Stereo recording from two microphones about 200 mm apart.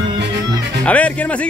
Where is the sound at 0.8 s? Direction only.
5° left (ahead or behind).